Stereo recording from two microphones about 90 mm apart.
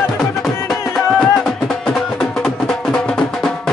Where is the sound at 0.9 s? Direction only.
5° left (ahead or behind).